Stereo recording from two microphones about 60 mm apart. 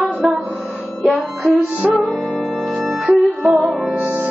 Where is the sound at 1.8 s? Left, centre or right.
Centre.